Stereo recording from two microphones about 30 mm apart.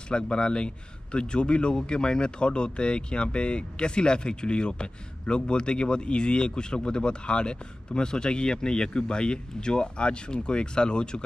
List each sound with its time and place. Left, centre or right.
0.1 s speech: left